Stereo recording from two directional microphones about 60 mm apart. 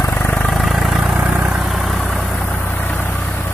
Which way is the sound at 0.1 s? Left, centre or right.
Left.